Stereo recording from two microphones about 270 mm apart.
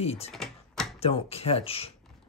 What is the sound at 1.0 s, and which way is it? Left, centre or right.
Speech, left.